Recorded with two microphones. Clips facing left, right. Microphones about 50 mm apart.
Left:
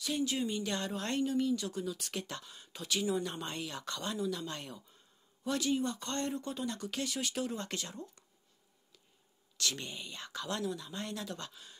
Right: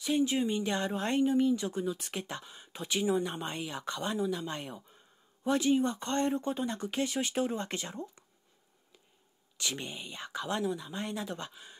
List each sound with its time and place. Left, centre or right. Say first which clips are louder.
0.0 s speech: right 5 dB; right
9.6 s speech: right 1 dB; centre